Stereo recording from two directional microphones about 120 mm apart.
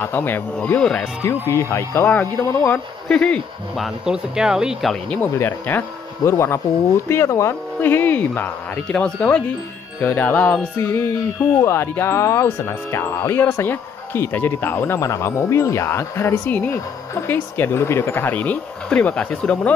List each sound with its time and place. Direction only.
0.0 s speech: 15° left (ahead or behind)
0.7 s speech: 5° left (ahead or behind)
1.2 s speech: 20° left (ahead or behind); by 4.9 s 5° right (ahead or behind)
5.1 s speech: 15° left (ahead or behind)